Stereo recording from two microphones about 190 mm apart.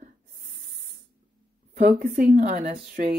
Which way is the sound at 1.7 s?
40° right (ahead or behind).